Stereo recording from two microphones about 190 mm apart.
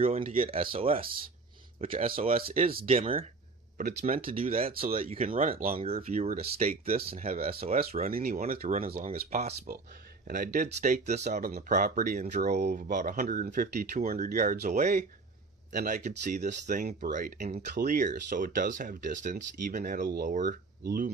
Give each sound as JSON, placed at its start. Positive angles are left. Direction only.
{"t": 0.0, "sound": "speech", "side_deg": -30}
{"t": 3.7, "sound": "speech", "side_deg": -45}
{"t": 4.9, "sound": "speech", "side_deg": -30}
{"t": 5.3, "sound": "speech", "side_deg": -45}
{"t": 5.8, "sound": "speech", "side_deg": -30}
{"t": 8.5, "sound": "speech", "side_deg": -30}